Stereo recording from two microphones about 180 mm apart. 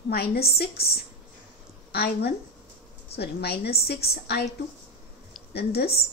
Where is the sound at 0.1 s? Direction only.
60° left (ahead or behind).